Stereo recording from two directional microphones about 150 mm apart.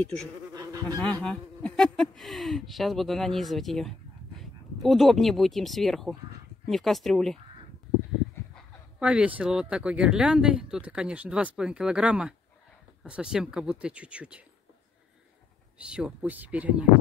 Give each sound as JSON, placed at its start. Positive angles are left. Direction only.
{"t": 0.6, "sound": "insect", "side_deg": -25}
{"t": 1.2, "sound": "speech", "side_deg": 5}
{"t": 9.0, "sound": "speech", "side_deg": -10}
{"t": 15.9, "sound": "speech", "side_deg": -5}